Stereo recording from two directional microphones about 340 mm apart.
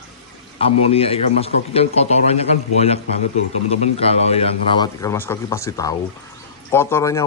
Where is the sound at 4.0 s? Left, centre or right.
Centre.